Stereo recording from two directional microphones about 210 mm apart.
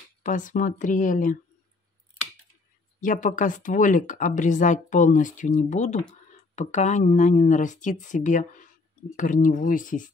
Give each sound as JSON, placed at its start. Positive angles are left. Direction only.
{"t": 0.2, "sound": "speech", "side_deg": 40}
{"t": 3.0, "sound": "speech", "side_deg": 40}